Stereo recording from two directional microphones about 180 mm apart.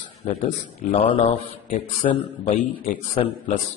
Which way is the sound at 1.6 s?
30° left (ahead or behind).